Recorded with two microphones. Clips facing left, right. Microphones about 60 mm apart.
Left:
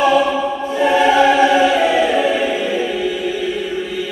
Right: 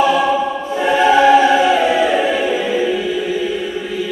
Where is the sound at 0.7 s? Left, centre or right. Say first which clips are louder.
Even; right.